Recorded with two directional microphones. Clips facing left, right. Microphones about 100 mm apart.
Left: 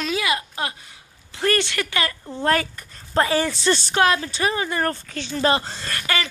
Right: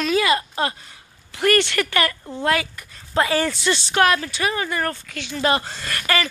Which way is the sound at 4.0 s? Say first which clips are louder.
Right 3 dB; 25° left (ahead or behind).